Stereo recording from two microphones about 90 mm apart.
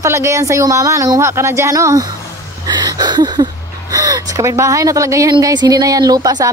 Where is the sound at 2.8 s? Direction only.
50° right (ahead or behind).